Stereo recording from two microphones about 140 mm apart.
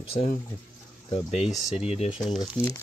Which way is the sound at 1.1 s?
50° left (ahead or behind).